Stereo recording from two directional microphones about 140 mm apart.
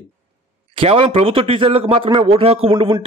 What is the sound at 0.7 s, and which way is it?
A man's voice, 40° right (ahead or behind).